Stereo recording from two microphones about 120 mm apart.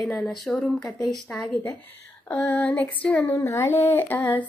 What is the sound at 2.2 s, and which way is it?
A woman's voice, 15° left (ahead or behind).